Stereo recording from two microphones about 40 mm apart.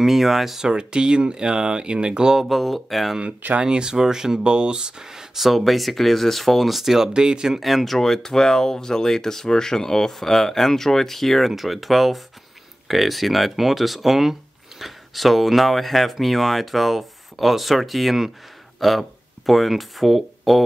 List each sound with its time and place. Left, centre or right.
0.0 s speech: centre
0.7 s speech: right
2.3 s speech: centre
3.6 s speech: centre
7.2 s speech: centre
7.6 s speech: centre